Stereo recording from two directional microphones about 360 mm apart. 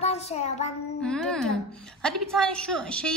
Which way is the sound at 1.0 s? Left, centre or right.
Centre.